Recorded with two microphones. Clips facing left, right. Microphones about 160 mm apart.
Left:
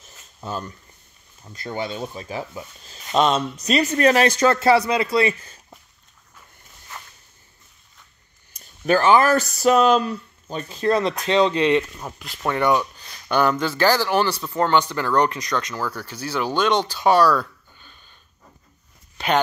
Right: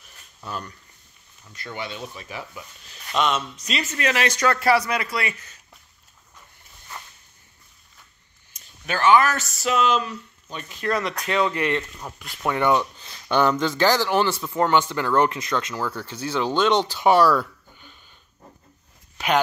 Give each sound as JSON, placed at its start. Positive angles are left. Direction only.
{"t": 0.0, "sound": "a sound", "side_deg": 25}
{"t": 1.4, "sound": "speech", "side_deg": 35}
{"t": 8.8, "sound": "speech", "side_deg": 35}
{"t": 12.0, "sound": "speech", "side_deg": 5}
{"t": 12.4, "sound": "speech", "side_deg": -20}
{"t": 19.1, "sound": "a sound", "side_deg": -5}